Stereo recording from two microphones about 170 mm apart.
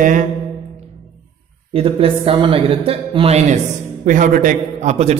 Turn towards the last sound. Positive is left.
turn(degrees=-40)  # may be behind; listen again after turning